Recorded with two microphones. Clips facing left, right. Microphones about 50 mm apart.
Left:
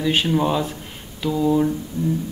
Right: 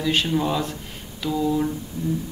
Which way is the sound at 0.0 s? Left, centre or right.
Centre.